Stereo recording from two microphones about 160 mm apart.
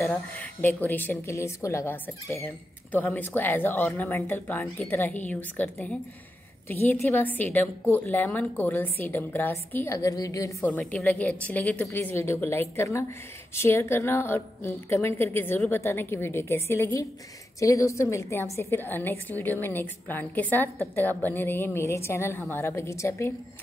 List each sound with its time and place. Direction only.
0.0 s a woman's voice: 15° left (ahead or behind)
10.7 s a woman's voice: 5° left (ahead or behind)